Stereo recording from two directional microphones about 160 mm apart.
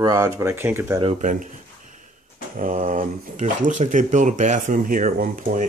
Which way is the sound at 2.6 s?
55° right (ahead or behind).